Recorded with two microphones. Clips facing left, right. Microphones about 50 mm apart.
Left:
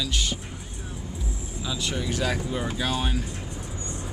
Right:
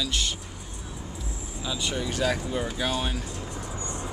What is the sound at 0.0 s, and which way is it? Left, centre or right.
Speech, centre.